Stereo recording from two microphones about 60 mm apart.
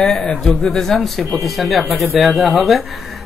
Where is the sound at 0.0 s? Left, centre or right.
Centre.